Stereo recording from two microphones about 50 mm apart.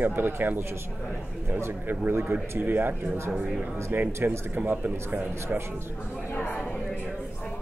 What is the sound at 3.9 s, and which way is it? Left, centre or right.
Speech, right.